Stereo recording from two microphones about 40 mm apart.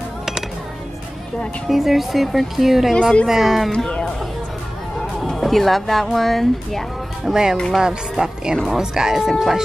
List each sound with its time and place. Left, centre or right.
1.7 s speech: centre
2.9 s speech: centre
3.3 s speech: centre
3.7 s speech: left
5.2 s speech: centre
7.2 s speech: centre